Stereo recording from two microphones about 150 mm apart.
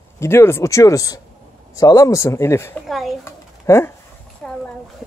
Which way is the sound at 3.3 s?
15° left (ahead or behind).